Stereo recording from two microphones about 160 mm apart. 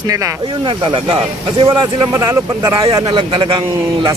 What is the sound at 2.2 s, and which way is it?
Speech, 20° right (ahead or behind).